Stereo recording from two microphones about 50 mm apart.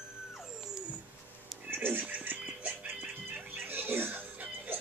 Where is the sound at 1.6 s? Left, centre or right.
Right.